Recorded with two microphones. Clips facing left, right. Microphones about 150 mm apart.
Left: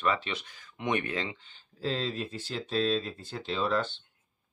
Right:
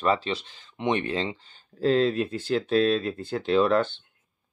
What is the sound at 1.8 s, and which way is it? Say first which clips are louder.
Speech: right 10 dB; 55° right (ahead or behind).